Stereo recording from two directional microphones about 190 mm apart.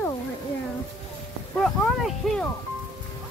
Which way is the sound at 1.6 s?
Centre (ahead or behind).